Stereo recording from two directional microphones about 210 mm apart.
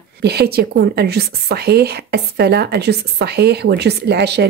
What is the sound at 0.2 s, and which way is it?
A woman's voice, 50° right (ahead or behind).